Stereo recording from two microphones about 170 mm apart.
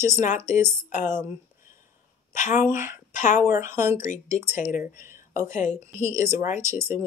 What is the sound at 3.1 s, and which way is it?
Speech, 45° left (ahead or behind).